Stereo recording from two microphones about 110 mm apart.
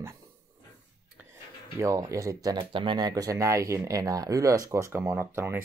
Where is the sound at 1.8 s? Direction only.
30° right (ahead or behind).